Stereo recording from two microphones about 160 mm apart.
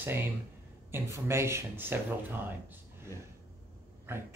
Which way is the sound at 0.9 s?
15° right (ahead or behind).